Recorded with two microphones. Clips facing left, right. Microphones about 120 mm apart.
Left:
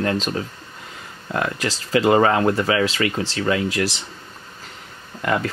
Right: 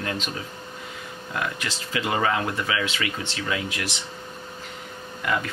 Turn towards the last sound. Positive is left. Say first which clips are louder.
# left 4 dB
turn(degrees=45)  # may be behind; listen again after turning